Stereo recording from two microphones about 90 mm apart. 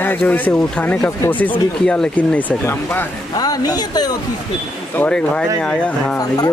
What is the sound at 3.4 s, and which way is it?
Speech, 45° left (ahead or behind).